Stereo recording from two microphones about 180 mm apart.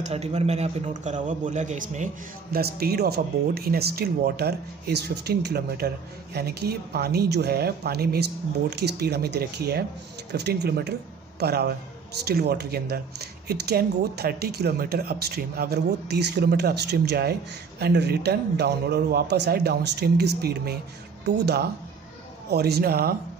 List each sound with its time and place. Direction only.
0.0 s a man's voice: 35° right (ahead or behind)
2.5 s speech: 60° right (ahead or behind)
22.5 s speech: 60° right (ahead or behind)